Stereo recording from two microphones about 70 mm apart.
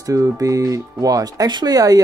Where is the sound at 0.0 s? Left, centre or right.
Right.